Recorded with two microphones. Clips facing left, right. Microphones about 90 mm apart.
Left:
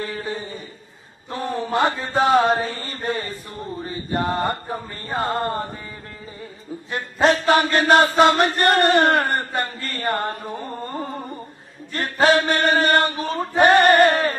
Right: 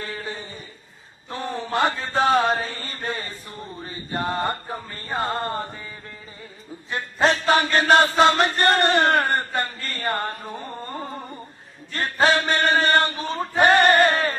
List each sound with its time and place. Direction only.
0.0 s chuckle: 25° left (ahead or behind)
1.3 s chant: 25° left (ahead or behind)
6.9 s chant: 25° left (ahead or behind)
9.5 s mantra: 25° left (ahead or behind)
12.0 s chant: 25° left (ahead or behind)